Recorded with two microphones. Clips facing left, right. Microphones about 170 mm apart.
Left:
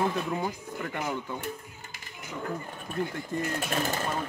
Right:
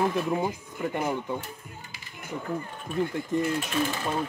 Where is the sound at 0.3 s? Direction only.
20° right (ahead or behind).